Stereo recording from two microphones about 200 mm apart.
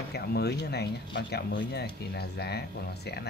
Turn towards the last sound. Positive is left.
turn(degrees=55)  # may be behind; listen again after turning